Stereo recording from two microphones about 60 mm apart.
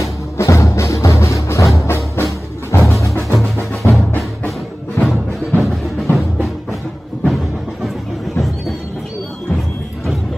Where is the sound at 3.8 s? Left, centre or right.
Left.